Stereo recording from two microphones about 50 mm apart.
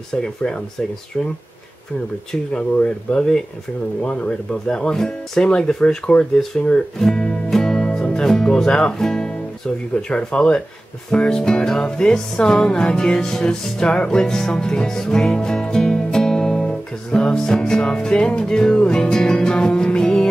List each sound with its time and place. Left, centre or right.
0.1 s music: centre
2.5 s music: centre
4.6 s music: centre
6.5 s speech: centre
11.1 s music: centre